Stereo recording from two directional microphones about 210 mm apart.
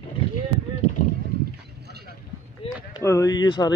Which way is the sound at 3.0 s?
15° left (ahead or behind).